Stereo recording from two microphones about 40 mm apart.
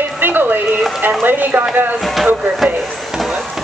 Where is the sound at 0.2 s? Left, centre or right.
Right.